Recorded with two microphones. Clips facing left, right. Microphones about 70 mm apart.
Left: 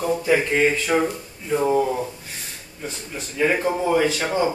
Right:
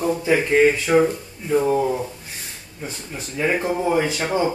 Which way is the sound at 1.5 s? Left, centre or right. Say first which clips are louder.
Right 1 dB; centre.